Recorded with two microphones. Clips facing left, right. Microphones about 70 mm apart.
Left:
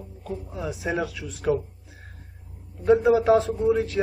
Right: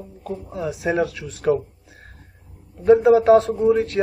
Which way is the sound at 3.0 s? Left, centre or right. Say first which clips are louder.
Right 5 dB; right.